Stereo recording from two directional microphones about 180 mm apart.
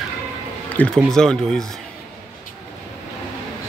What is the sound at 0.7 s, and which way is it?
Speech, 5° left (ahead or behind).